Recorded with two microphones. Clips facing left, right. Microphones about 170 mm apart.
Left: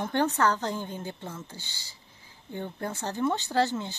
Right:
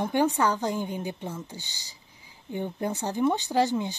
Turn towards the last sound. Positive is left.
turn(degrees=-15)  # may be behind; listen again after turning